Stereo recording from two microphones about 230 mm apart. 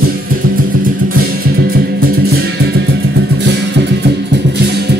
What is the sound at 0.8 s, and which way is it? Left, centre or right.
Music, right.